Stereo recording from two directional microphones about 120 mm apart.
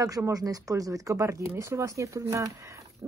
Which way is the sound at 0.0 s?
30° right (ahead or behind).